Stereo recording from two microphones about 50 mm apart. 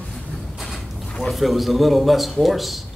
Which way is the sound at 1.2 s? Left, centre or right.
Centre.